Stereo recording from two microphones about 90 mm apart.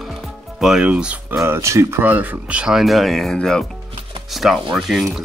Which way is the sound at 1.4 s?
35° right (ahead or behind).